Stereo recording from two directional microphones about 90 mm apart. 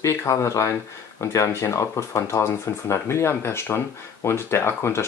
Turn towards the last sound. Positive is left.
turn(degrees=30)  # may be behind; listen again after turning